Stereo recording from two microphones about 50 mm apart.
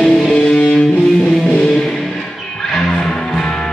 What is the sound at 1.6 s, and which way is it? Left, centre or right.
Music, centre.